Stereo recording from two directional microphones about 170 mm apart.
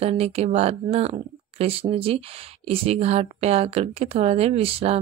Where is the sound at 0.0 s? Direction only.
40° right (ahead or behind).